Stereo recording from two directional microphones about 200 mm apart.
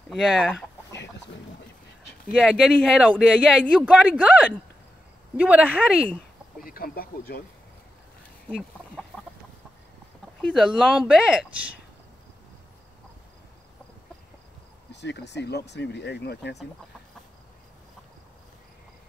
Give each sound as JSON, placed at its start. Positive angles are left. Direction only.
{"t": 0.1, "sound": "speech", "side_deg": 0}
{"t": 2.3, "sound": "speech", "side_deg": 0}
{"t": 6.6, "sound": "speech", "side_deg": 45}
{"t": 8.5, "sound": "chicken", "side_deg": 0}
{"t": 10.4, "sound": "speech", "side_deg": 0}
{"t": 14.9, "sound": "speech", "side_deg": 60}